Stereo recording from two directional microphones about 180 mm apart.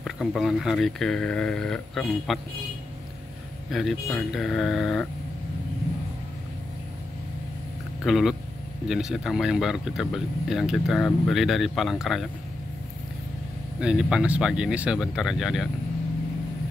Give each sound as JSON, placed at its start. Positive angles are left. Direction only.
{"t": 0.0, "sound": "speech", "side_deg": 0}
{"t": 3.7, "sound": "speech", "side_deg": 0}
{"t": 8.0, "sound": "speech", "side_deg": 0}
{"t": 13.7, "sound": "speech", "side_deg": -5}